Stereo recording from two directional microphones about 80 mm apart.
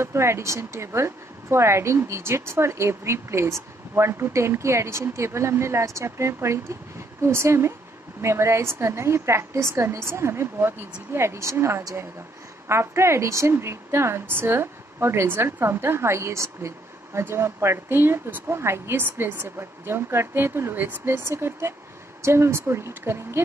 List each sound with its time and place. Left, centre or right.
0.0 s a woman's voice: right